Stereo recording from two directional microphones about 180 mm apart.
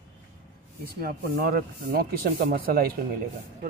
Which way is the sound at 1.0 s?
55° right (ahead or behind).